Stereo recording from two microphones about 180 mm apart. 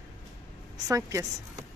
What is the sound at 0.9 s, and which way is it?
Speech, 15° right (ahead or behind).